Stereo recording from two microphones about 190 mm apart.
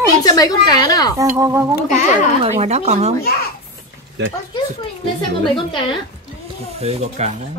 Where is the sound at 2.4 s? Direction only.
35° right (ahead or behind).